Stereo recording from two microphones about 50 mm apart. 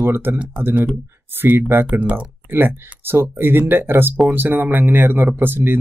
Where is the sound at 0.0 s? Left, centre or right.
Right.